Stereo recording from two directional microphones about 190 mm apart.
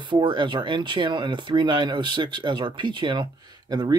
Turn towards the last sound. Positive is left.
turn(degrees=-20)  # may be behind; listen again after turning